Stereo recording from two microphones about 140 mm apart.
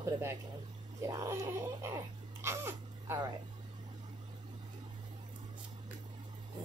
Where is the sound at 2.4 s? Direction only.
20° right (ahead or behind).